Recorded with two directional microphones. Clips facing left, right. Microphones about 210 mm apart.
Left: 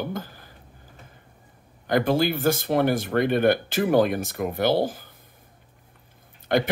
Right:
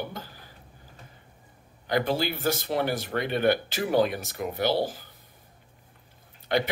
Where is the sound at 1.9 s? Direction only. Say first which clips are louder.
Left 5 dB; 50° left (ahead or behind).